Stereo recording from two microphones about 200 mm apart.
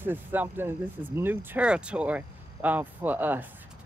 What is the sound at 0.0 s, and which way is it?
Speech, 10° right (ahead or behind).